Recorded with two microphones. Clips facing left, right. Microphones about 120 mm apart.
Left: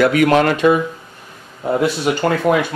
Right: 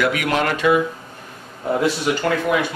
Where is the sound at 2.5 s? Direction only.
45° left (ahead or behind).